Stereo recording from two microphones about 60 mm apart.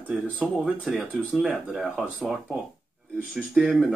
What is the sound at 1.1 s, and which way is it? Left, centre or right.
Speech, left.